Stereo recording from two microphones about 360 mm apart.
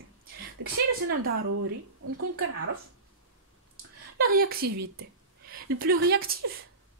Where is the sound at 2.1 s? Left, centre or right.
Right.